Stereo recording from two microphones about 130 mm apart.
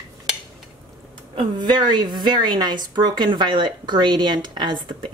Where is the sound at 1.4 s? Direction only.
35° right (ahead or behind).